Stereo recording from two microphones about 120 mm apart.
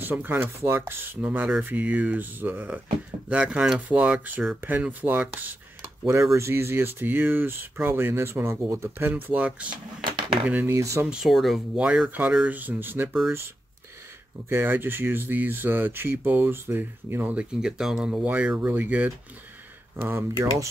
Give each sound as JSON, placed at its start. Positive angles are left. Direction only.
{"t": 0.0, "sound": "speech", "side_deg": -15}
{"t": 11.1, "sound": "speech", "side_deg": -5}
{"t": 14.5, "sound": "speech", "side_deg": -20}